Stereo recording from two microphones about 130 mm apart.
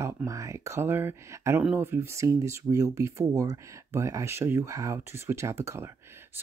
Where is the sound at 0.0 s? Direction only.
25° right (ahead or behind).